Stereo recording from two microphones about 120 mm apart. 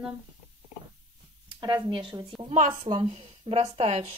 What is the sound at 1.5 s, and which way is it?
Speech, 35° right (ahead or behind).